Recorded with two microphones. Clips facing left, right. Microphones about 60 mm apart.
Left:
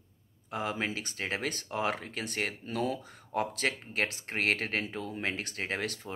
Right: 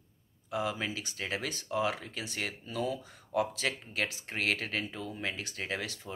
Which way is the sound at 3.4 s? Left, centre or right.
Left.